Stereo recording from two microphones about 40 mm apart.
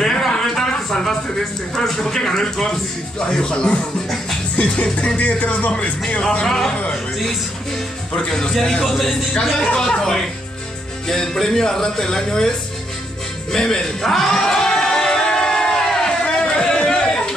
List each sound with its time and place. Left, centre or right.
0.0 s a sound: centre
1.8 s speech: centre
4.6 s music: left
5.7 s speech: left
6.4 s speech: centre
8.3 s speech: centre
13.5 s music: centre
16.4 s a sound: left